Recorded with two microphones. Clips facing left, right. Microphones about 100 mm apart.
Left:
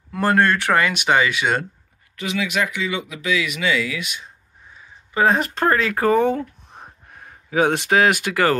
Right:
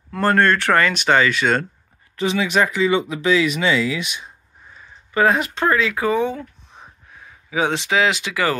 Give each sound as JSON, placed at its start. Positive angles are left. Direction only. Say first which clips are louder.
{"t": 0.1, "sound": "speech", "louder": "right 1 dB", "side_deg": 10}
{"t": 2.1, "sound": "speech", "louder": "right 4 dB", "side_deg": -35}
{"t": 5.1, "sound": "speech", "louder": "right 1 dB", "side_deg": 25}
{"t": 5.4, "sound": "speech", "louder": "even", "side_deg": 45}